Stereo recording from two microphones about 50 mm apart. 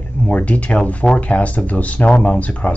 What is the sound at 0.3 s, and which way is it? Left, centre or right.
Speech, left.